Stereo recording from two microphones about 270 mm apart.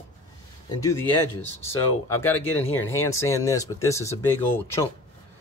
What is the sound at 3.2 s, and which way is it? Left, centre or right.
Speech, centre.